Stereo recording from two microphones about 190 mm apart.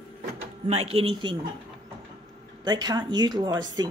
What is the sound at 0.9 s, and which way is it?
Speech, 30° right (ahead or behind).